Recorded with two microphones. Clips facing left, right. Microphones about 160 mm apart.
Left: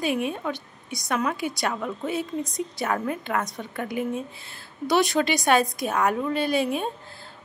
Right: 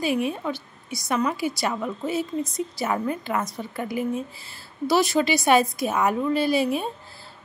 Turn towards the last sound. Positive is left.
turn(degrees=-5)  # may be behind; listen again after turning